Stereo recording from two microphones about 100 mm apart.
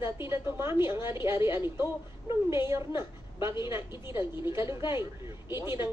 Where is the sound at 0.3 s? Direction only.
25° right (ahead or behind).